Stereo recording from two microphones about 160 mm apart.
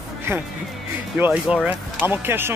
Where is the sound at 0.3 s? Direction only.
15° right (ahead or behind).